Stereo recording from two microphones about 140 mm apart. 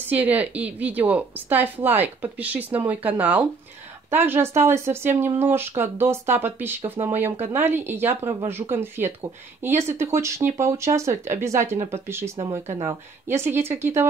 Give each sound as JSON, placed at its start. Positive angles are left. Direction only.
{"t": 0.1, "sound": "a woman's voice", "side_deg": -10}